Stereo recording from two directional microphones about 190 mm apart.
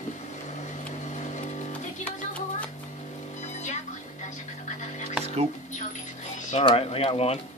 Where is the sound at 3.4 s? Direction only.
35° left (ahead or behind).